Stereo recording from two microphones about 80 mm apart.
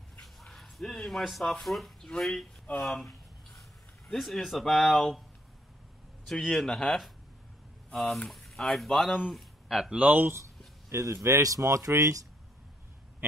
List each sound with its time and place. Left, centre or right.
0.2 s speech: centre
4.1 s speech: centre
6.2 s a man's voice: centre
9.9 s speech: right
10.9 s speech: right